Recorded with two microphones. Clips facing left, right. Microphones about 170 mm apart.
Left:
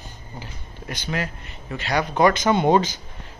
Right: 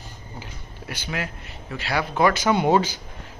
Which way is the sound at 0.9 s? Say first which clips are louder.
Left 3 dB; 10° right (ahead or behind).